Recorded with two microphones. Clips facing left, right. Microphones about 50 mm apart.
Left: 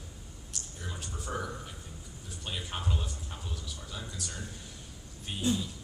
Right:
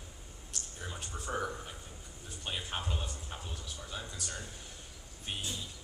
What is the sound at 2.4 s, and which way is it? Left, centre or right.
Speech, centre.